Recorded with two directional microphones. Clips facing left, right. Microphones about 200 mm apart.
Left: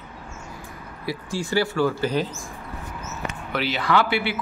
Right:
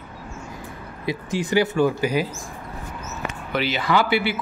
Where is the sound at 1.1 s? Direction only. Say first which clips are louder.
Right 3 dB; 20° right (ahead or behind).